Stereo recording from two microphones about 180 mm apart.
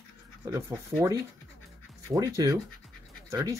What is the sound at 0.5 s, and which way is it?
Speech, 15° right (ahead or behind).